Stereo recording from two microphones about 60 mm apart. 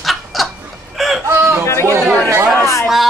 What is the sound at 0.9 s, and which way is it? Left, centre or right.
Chicken, centre.